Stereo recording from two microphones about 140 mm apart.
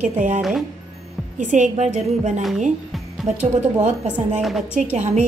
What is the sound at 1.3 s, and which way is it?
A woman's voice, 65° right (ahead or behind).